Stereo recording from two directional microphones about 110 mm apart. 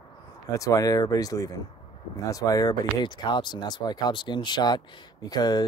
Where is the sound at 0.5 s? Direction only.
30° left (ahead or behind).